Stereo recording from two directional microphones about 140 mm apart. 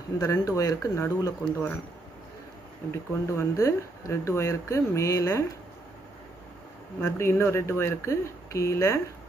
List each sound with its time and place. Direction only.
0.2 s a man's voice: 20° left (ahead or behind)
2.9 s speech: 20° left (ahead or behind)
7.2 s speech: 20° left (ahead or behind)